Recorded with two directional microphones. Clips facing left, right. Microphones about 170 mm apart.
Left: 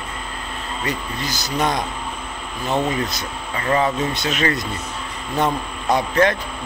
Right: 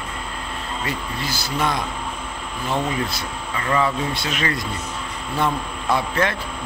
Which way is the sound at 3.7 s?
25° left (ahead or behind).